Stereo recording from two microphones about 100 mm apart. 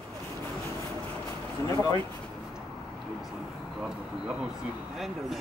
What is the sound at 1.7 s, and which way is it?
Speech, 35° left (ahead or behind).